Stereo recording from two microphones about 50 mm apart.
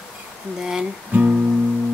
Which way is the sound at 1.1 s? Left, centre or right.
Right.